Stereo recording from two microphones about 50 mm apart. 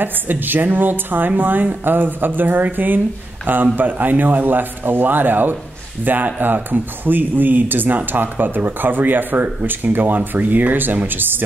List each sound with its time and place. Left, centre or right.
0.0 s speech: right